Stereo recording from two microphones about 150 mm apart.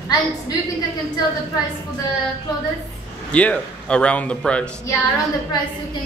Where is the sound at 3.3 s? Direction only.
10° left (ahead or behind).